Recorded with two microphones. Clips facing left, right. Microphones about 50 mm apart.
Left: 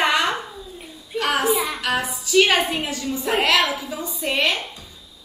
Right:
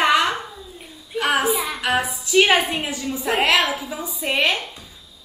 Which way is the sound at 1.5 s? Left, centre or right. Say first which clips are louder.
Left 1 dB; centre.